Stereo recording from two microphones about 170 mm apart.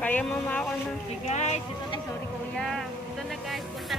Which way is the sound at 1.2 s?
40° left (ahead or behind).